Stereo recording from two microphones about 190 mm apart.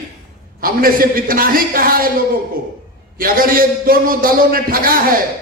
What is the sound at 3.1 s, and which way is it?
A man's voice, 50° right (ahead or behind).